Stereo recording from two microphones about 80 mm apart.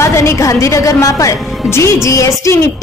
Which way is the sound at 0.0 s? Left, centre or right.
Left.